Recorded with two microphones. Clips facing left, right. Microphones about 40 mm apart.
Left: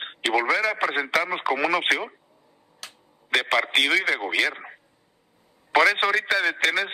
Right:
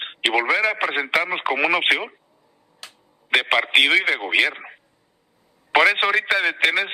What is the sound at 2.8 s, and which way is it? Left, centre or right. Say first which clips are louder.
Tick-tock: even; centre.